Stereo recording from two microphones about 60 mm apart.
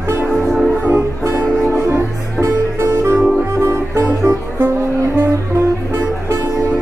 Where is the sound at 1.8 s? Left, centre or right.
Right.